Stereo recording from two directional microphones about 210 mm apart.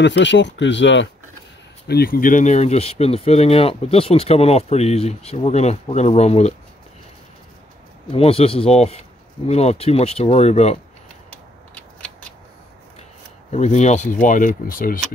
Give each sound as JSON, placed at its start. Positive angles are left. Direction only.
{"t": 0.0, "sound": "speech", "side_deg": 60}
{"t": 1.9, "sound": "speech", "side_deg": 45}
{"t": 8.1, "sound": "speech", "side_deg": 25}
{"t": 13.5, "sound": "speech", "side_deg": 35}